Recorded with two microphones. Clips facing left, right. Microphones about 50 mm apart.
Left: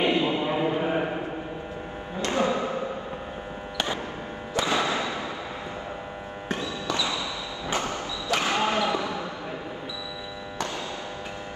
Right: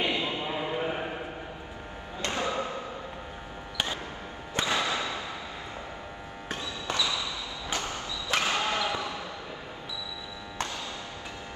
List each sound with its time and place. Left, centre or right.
0.0 s a sound: left
2.2 s music: left
4.6 s music: left
8.4 s basketball bounce: left